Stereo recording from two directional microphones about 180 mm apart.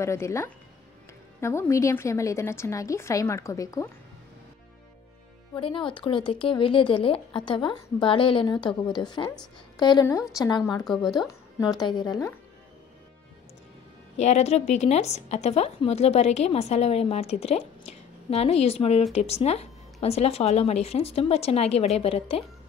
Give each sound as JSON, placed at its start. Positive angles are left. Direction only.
{"t": 0.0, "sound": "a woman's voice", "side_deg": 15}
{"t": 5.5, "sound": "speech", "side_deg": 30}
{"t": 10.9, "sound": "speech", "side_deg": 0}
{"t": 11.1, "sound": "speech", "side_deg": 20}
{"t": 14.1, "sound": "a woman's voice", "side_deg": 40}